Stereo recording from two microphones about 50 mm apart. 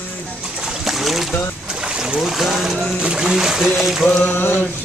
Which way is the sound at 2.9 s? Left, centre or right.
Centre.